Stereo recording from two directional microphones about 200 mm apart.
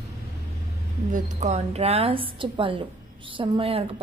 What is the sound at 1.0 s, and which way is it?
A woman's voice, 40° right (ahead or behind).